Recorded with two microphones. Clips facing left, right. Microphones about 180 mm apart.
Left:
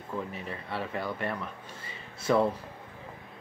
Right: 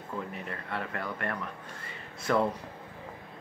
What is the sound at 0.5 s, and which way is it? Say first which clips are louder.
Speech: left 1 dB; 10° left (ahead or behind).